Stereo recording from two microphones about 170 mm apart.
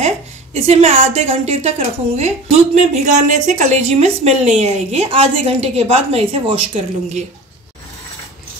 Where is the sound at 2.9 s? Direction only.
45° right (ahead or behind).